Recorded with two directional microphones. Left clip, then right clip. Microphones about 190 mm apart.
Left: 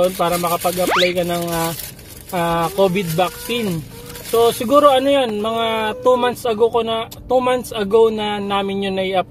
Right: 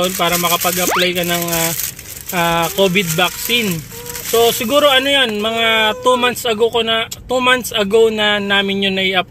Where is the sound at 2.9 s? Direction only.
5° left (ahead or behind).